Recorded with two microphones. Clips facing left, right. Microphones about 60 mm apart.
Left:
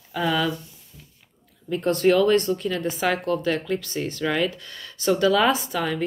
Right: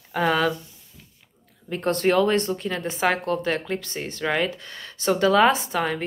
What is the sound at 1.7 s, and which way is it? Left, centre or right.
Speech, right.